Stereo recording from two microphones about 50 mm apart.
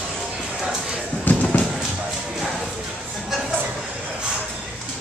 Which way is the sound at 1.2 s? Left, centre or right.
Left.